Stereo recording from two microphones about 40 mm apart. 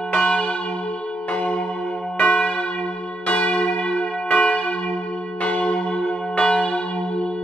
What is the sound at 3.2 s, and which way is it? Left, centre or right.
Church bell, left.